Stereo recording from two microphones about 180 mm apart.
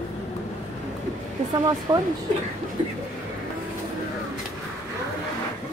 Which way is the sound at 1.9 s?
25° right (ahead or behind).